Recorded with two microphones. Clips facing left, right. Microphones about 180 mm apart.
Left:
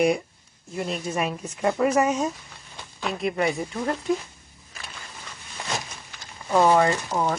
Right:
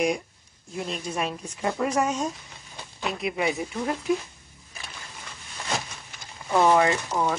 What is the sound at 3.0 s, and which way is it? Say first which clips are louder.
Speech: left 3 dB; 5° right (ahead or behind).